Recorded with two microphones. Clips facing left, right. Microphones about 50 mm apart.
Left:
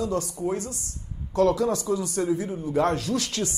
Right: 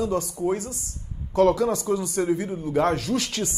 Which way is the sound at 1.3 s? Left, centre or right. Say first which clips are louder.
Right 2 dB; right.